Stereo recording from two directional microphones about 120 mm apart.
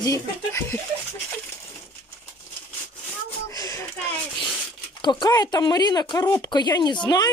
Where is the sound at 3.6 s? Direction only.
30° left (ahead or behind).